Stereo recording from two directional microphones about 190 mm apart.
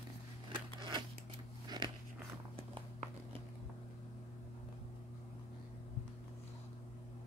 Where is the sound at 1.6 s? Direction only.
20° right (ahead or behind).